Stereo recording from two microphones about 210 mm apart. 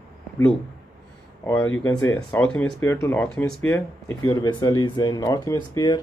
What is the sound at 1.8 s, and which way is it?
Speech, 10° left (ahead or behind).